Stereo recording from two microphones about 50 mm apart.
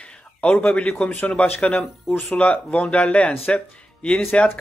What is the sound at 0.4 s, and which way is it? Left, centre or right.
A man's voice, left.